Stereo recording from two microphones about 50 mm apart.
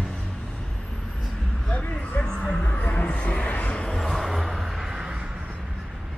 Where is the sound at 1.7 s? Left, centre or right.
Left.